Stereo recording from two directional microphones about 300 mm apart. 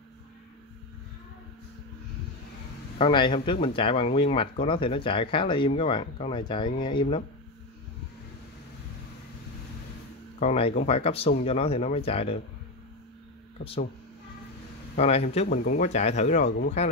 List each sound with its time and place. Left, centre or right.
3.0 s speech: centre
10.4 s speech: left
15.0 s speech: left